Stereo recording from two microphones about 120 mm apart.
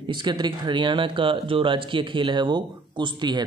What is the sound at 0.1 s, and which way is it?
Speech, 40° right (ahead or behind).